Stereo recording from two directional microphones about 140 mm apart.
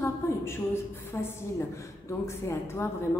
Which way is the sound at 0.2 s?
20° left (ahead or behind).